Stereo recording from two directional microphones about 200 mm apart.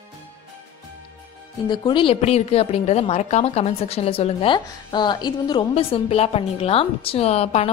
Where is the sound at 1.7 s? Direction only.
20° left (ahead or behind).